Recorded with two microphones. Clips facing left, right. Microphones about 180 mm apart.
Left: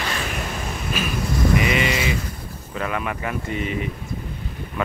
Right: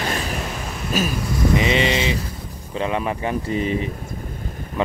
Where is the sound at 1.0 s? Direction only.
40° right (ahead or behind).